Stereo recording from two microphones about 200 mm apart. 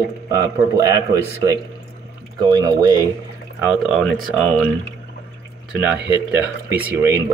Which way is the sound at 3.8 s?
Centre (ahead or behind).